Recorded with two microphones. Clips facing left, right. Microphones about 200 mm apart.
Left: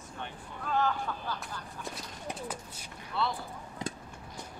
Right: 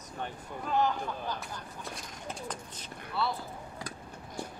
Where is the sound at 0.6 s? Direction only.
15° right (ahead or behind).